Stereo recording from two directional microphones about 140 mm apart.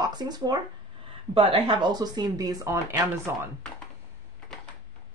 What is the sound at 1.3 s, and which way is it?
Speech, 40° right (ahead or behind).